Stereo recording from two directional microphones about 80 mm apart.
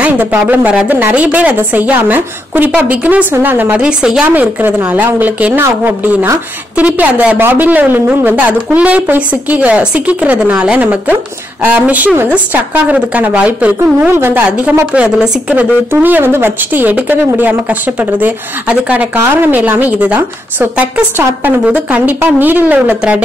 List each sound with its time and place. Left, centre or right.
0.0 s speech: right
4.3 s speech: right
5.6 s speech: right
6.8 s speech: centre
14.9 s speech: centre
15.9 s speech: right